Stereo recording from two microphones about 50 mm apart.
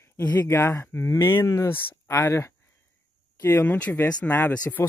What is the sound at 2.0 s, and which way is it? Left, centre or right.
Speech, left.